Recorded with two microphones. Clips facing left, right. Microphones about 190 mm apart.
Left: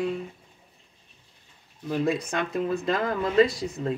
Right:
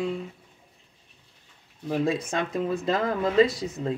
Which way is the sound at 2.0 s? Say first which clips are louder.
Left 1 dB; 25° right (ahead or behind).